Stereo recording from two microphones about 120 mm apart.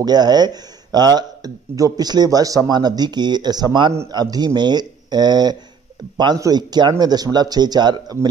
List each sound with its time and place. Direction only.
0.0 s speech: 35° right (ahead or behind)